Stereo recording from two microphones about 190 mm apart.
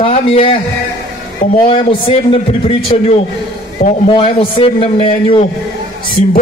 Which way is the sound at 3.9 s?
30° left (ahead or behind).